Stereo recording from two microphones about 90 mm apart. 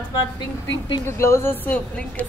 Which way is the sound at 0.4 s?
55° left (ahead or behind).